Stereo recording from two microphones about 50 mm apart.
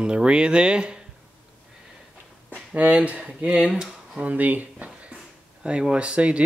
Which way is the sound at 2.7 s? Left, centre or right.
Right.